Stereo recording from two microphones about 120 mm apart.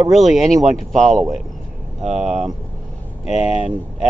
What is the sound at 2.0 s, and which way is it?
Speech, 70° right (ahead or behind).